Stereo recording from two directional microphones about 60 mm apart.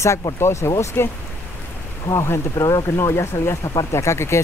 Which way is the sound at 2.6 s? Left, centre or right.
Left.